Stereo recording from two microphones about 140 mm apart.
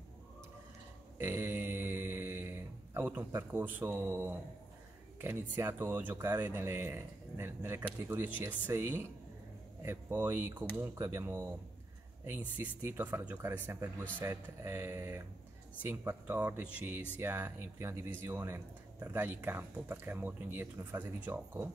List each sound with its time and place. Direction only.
1.2 s mantra: 15° right (ahead or behind)
5.2 s speech: 15° right (ahead or behind)